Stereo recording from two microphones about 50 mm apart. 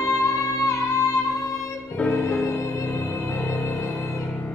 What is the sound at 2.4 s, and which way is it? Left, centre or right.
Music, left.